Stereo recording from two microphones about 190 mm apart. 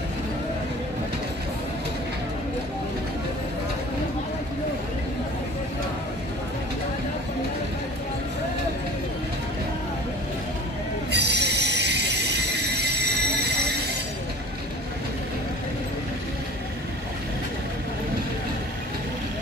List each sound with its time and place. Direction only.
11.1 s train wheels squealing: 60° right (ahead or behind)